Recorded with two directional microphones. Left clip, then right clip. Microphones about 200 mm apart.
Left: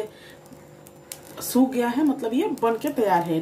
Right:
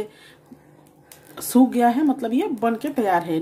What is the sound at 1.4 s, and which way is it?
A woman's voice, 50° right (ahead or behind).